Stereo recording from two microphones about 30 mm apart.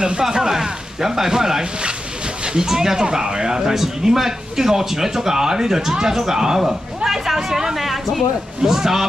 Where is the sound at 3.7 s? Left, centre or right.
Centre.